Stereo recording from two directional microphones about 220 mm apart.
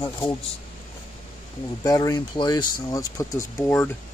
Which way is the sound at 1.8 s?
15° left (ahead or behind).